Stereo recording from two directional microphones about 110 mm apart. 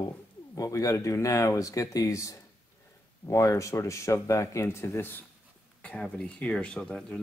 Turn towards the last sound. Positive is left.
turn(degrees=10)  # may be behind; listen again after turning